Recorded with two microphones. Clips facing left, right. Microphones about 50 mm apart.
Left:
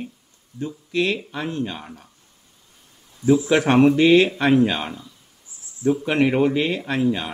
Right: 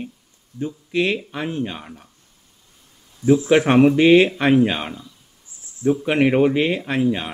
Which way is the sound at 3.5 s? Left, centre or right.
Centre.